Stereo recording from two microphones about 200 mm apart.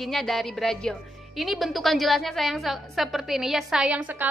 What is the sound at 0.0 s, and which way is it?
A woman's voice, centre (ahead or behind).